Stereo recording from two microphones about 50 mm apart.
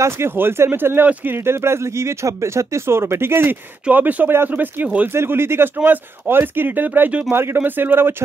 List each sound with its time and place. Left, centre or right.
0.3 s speech: right
3.9 s speech: right
5.1 s speech: right
5.8 s speech: right
7.2 s speech: right